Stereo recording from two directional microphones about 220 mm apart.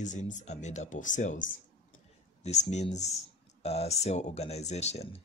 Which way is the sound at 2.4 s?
30° left (ahead or behind).